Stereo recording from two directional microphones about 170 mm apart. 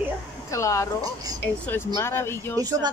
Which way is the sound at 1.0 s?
20° right (ahead or behind).